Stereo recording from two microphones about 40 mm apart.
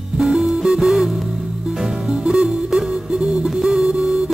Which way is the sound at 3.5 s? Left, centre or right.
Centre.